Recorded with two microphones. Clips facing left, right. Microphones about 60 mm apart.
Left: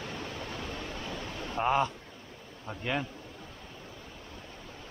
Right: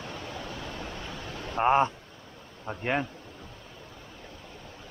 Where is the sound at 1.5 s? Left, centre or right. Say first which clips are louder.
Right 5 dB; right.